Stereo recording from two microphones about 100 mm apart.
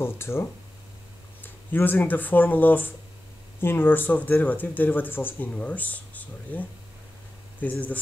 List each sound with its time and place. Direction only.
0.0 s speech: 25° left (ahead or behind)
7.6 s speech: 15° left (ahead or behind)